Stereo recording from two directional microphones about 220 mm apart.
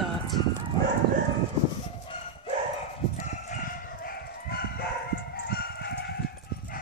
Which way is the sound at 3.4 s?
40° left (ahead or behind).